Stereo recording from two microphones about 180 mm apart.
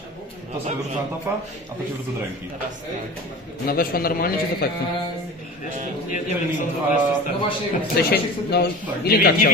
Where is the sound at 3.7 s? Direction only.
55° left (ahead or behind).